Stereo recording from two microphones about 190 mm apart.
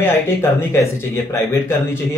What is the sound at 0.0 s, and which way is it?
Speech, 15° left (ahead or behind).